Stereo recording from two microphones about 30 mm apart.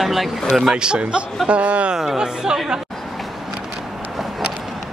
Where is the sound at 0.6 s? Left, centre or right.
Right.